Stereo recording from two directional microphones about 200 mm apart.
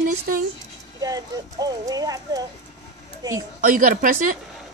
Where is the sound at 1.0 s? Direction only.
20° right (ahead or behind).